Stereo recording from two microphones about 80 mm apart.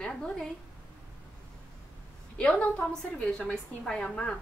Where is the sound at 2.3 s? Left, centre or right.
Centre.